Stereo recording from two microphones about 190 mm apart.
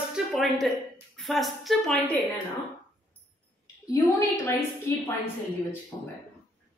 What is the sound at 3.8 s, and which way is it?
Speech, 15° left (ahead or behind).